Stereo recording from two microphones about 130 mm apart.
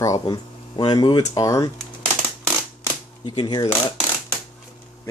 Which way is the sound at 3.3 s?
35° left (ahead or behind).